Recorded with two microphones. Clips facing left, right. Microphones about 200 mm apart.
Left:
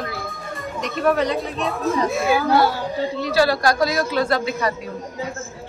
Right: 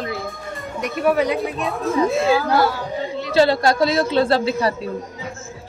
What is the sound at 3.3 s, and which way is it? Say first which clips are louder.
A woman's voice: right 3 dB; 25° right (ahead or behind).